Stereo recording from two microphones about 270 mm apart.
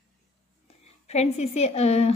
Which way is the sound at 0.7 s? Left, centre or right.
Left.